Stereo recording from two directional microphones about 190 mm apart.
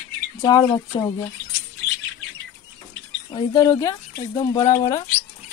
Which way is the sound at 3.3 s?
20° left (ahead or behind).